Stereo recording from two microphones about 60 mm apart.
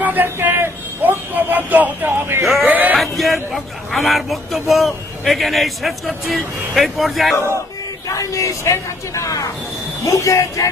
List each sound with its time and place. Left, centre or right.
0.0 s speech: right
2.6 s a sound: right
3.0 s speech: centre
8.3 s speech: left